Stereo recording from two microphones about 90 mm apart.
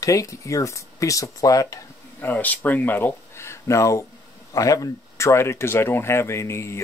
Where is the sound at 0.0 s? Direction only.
40° left (ahead or behind).